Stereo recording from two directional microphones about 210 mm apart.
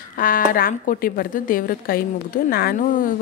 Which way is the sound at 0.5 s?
40° left (ahead or behind).